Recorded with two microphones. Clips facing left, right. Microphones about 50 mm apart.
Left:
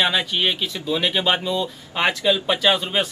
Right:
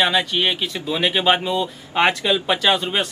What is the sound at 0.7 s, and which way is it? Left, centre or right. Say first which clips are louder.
Speech: right 1 dB; right.